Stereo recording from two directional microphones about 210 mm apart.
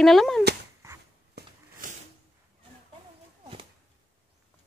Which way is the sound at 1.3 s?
40° right (ahead or behind).